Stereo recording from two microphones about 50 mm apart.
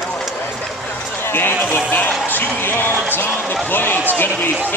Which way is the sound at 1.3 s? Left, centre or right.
Left.